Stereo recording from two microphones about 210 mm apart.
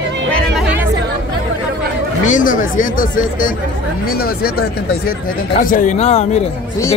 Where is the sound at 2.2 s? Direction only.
40° left (ahead or behind).